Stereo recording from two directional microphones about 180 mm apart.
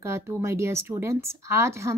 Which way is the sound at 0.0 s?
15° right (ahead or behind).